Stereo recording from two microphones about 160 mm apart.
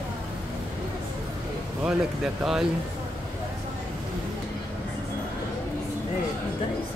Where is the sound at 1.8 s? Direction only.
5° right (ahead or behind).